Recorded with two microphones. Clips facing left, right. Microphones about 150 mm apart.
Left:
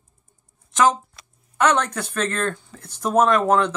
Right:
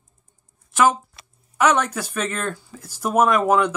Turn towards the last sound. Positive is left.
turn(degrees=-10)  # may be behind; listen again after turning